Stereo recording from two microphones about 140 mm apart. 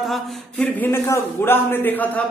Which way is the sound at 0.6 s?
15° left (ahead or behind).